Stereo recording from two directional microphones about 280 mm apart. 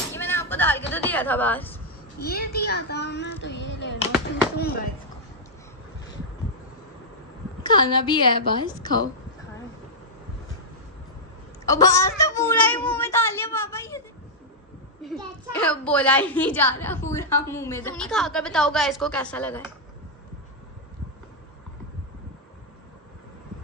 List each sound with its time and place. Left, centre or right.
0.1 s a sound: centre
2.1 s a woman's voice: left
7.6 s speech: centre
11.6 s speech: centre
15.5 s a woman's voice: centre